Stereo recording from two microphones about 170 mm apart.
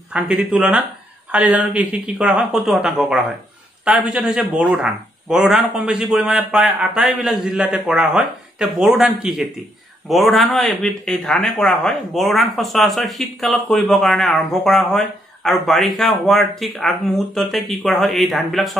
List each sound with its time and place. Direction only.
0.1 s speech: 5° right (ahead or behind)